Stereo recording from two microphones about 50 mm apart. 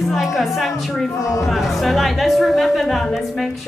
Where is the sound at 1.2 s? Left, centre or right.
Left.